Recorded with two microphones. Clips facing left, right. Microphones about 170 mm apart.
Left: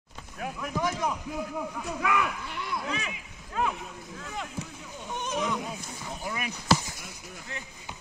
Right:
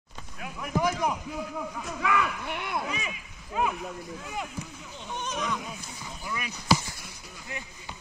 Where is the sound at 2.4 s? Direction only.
60° right (ahead or behind).